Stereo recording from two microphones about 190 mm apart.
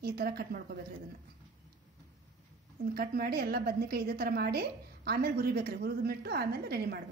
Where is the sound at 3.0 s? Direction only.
55° right (ahead or behind).